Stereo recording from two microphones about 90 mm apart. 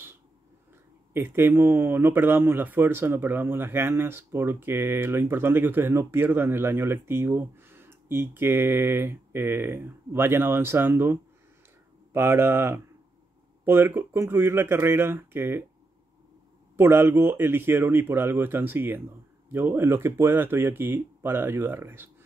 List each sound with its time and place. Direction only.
1.1 s speech: 25° right (ahead or behind)
16.7 s speech: 25° right (ahead or behind)